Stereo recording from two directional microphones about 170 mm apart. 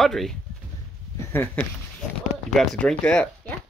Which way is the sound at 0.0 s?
Centre (ahead or behind).